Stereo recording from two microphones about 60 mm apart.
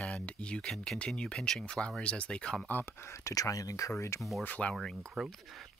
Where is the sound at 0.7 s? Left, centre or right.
Centre.